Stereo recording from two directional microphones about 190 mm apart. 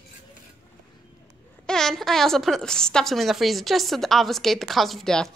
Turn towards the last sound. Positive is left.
turn(degrees=0)  # may be behind; listen again after turning